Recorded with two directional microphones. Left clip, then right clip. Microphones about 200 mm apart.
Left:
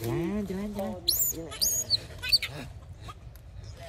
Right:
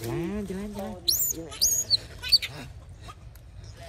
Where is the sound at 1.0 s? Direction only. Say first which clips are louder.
Right 4 dB; 5° left (ahead or behind).